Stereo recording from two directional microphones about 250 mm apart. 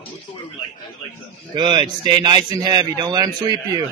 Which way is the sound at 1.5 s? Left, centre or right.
Centre.